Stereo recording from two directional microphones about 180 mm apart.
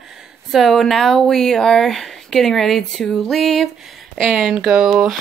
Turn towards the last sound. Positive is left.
turn(degrees=-5)  # may be behind; listen again after turning